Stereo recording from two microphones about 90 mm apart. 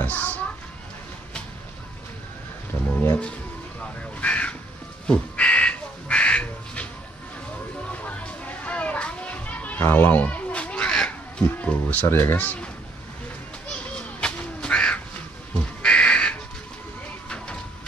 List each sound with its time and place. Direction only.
0.0 s speech: 15° left (ahead or behind)
2.7 s speech: 30° left (ahead or behind)
4.2 s crow: 15° left (ahead or behind)
5.0 s duck: 10° left (ahead or behind)
7.9 s children playing: 15° left (ahead or behind)
11.4 s music: 15° left (ahead or behind)
14.2 s crow: 10° left (ahead or behind)